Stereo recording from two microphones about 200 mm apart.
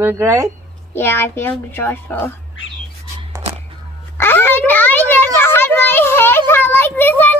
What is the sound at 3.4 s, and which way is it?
Music, 30° right (ahead or behind).